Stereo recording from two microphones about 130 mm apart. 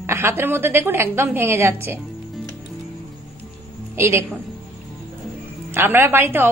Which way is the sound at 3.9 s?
20° right (ahead or behind).